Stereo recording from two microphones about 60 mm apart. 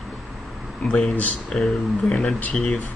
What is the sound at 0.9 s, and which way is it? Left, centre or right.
Speech, centre.